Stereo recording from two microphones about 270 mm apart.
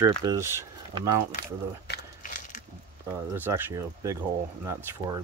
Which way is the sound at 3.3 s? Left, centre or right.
Centre.